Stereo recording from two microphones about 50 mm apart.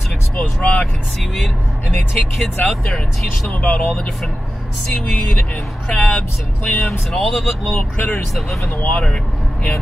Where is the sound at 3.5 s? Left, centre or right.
Left.